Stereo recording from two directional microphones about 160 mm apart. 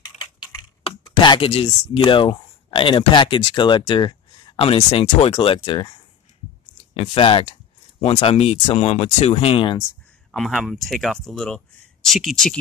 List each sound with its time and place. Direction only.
0.0 s typing: 25° left (ahead or behind)
2.0 s speech: 30° left (ahead or behind)
10.3 s speech: centre (ahead or behind)